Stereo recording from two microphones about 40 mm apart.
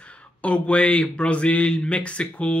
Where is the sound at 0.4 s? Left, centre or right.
Left.